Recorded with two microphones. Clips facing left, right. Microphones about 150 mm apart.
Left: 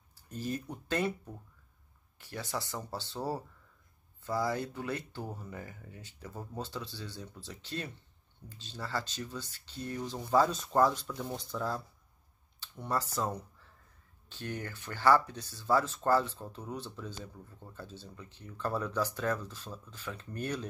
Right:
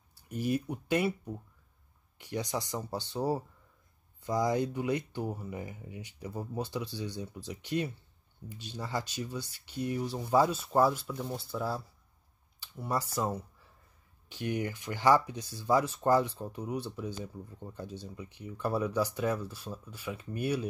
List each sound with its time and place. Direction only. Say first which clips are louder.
0.3 s speech: right 6 dB; 15° right (ahead or behind)